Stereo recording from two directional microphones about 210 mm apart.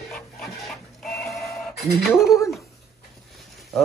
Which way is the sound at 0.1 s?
Centre (ahead or behind).